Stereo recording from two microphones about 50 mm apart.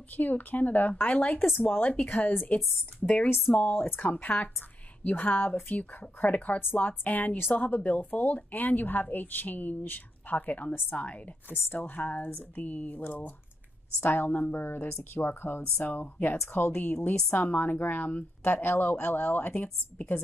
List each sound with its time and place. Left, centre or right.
0.2 s speech: left
3.5 s speech: left
4.0 s speech: left